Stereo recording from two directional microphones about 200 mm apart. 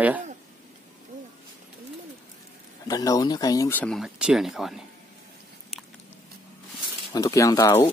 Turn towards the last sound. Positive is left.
turn(degrees=15)  # may be behind; listen again after turning